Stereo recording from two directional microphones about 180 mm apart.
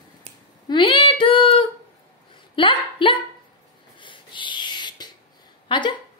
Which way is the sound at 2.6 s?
30° left (ahead or behind).